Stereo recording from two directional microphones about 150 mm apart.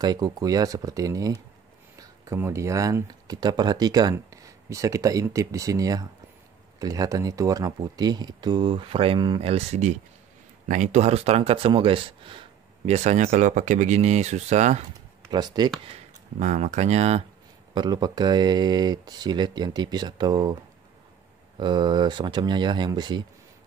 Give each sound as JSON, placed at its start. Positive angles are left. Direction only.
{"t": 0.0, "sound": "speech", "side_deg": -25}
{"t": 9.4, "sound": "speech", "side_deg": -45}
{"t": 15.3, "sound": "speech", "side_deg": -30}
{"t": 15.9, "sound": "speech", "side_deg": -50}
{"t": 17.7, "sound": "speech", "side_deg": -30}
{"t": 21.5, "sound": "speech", "side_deg": -30}